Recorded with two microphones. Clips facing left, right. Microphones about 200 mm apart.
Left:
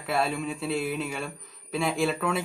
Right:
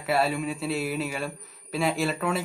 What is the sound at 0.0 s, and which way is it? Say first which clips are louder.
A man's voice: right 2 dB; 5° right (ahead or behind).